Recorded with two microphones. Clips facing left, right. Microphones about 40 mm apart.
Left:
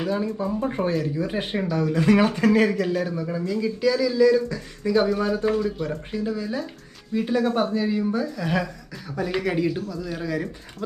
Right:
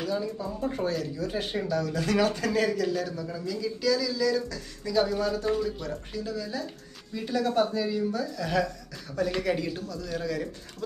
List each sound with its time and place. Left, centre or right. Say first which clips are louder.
0.0 s speech: left 5 dB; left